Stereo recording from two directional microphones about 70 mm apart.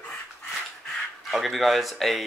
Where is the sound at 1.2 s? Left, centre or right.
Centre.